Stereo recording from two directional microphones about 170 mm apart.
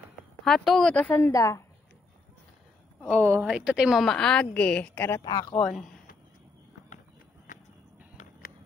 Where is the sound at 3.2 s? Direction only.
10° right (ahead or behind); by 5.2 s 10° left (ahead or behind).